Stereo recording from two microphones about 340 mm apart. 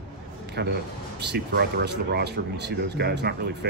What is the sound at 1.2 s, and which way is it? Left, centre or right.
Speech, right.